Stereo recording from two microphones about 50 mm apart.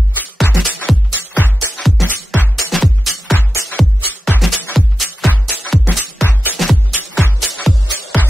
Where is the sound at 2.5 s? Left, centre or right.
Centre.